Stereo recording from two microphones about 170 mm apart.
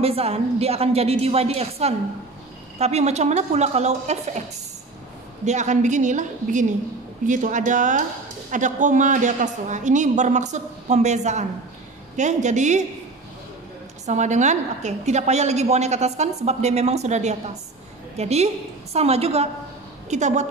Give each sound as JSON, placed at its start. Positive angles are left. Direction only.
{"t": 0.0, "sound": "a woman's voice", "side_deg": -35}
{"t": 5.4, "sound": "a woman's voice", "side_deg": -45}
{"t": 14.0, "sound": "a woman's voice", "side_deg": -45}